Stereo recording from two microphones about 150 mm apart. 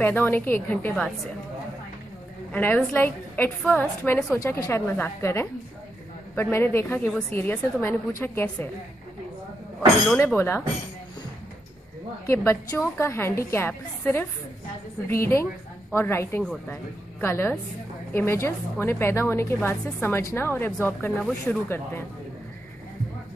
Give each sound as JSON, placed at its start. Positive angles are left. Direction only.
{"t": 0.0, "sound": "a woman's voice", "side_deg": 15}
{"t": 2.5, "sound": "a woman's voice", "side_deg": 10}
{"t": 9.8, "sound": "speech", "side_deg": 5}
{"t": 10.2, "sound": "a woman's voice", "side_deg": 15}
{"t": 12.3, "sound": "a woman's voice", "side_deg": 15}
{"t": 21.6, "sound": "a woman's voice", "side_deg": 15}